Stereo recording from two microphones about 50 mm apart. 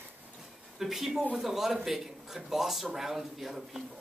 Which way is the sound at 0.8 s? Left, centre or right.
Centre.